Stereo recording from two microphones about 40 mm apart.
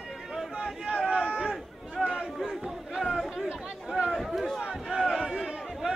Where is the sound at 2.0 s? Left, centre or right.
Centre.